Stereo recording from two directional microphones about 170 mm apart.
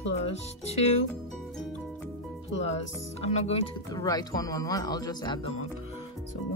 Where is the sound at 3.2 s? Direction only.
40° left (ahead or behind).